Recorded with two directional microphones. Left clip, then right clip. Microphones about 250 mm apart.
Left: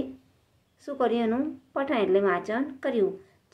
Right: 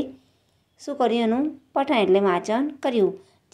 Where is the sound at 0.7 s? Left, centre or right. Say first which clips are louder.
Right 4 dB; centre.